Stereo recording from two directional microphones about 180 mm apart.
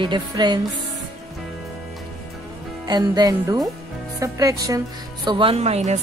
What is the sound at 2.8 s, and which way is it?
Speech, 25° right (ahead or behind).